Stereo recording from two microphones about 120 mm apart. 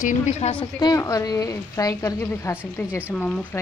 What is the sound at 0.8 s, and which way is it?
A woman's voice, 30° left (ahead or behind).